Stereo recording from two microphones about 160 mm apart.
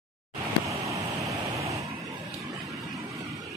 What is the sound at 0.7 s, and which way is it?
Vehicle, 20° right (ahead or behind).